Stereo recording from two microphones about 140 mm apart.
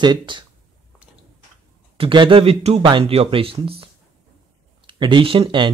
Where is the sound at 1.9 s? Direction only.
40° right (ahead or behind).